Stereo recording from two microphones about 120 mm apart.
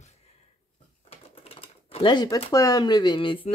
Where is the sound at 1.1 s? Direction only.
55° left (ahead or behind).